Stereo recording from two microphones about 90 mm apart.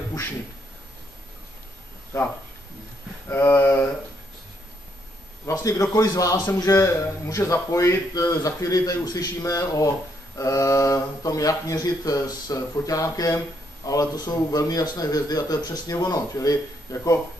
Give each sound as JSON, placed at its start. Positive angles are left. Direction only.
{"t": 2.1, "sound": "a man's voice", "side_deg": 35}
{"t": 5.5, "sound": "a man's voice", "side_deg": 40}